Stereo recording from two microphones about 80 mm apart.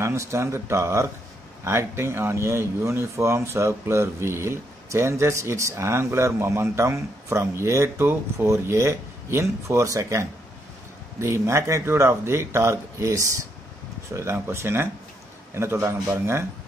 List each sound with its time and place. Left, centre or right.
0.0 s speech: right